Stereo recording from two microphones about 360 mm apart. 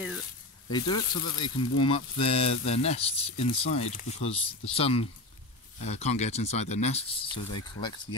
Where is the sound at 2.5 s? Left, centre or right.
Left.